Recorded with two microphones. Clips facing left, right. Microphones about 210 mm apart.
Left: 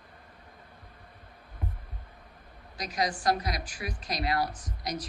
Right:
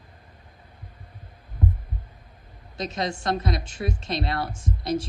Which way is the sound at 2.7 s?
25° right (ahead or behind).